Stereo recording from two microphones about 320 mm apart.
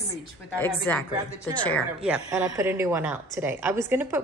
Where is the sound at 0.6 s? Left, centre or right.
Centre.